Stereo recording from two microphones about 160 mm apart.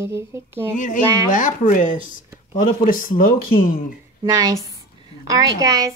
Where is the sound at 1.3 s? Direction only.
55° left (ahead or behind).